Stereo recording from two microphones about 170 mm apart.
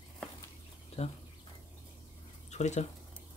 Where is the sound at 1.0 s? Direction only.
40° left (ahead or behind).